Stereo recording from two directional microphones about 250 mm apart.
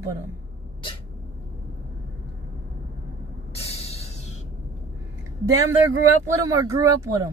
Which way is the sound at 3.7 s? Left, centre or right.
Left.